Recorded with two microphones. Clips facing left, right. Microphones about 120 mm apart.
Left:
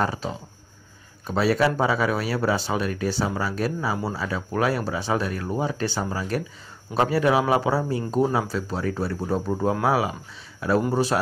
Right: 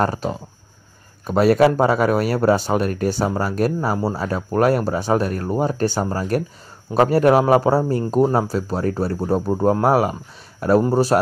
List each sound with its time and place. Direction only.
0.0 s speech: 50° right (ahead or behind)